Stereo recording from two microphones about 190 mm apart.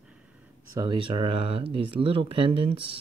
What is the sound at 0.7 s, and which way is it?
Speech, 25° right (ahead or behind).